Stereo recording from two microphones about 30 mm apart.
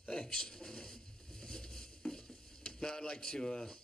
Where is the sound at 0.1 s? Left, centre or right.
Left.